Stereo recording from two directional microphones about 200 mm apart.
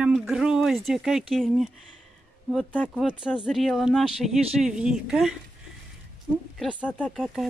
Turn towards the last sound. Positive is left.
turn(degrees=0)  # may be behind; listen again after turning